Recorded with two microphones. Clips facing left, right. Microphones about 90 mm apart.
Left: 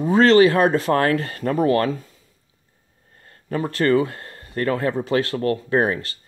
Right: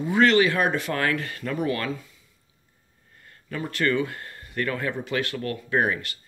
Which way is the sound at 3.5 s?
35° left (ahead or behind).